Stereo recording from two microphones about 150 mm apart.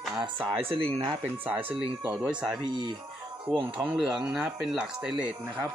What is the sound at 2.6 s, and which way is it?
Speech, 30° right (ahead or behind).